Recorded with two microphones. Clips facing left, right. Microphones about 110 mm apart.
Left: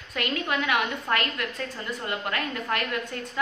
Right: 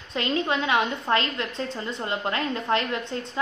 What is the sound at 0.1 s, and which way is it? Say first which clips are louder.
A woman's voice: right 3 dB; 25° right (ahead or behind).